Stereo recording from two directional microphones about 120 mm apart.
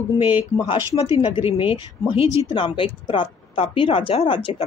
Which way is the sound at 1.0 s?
45° left (ahead or behind).